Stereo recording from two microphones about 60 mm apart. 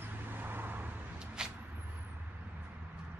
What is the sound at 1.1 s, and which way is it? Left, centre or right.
Vehicle, centre.